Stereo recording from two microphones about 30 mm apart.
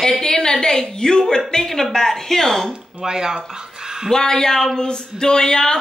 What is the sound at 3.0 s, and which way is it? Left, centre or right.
Speech, right.